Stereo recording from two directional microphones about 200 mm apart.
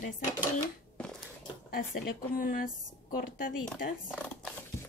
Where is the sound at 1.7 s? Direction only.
45° left (ahead or behind).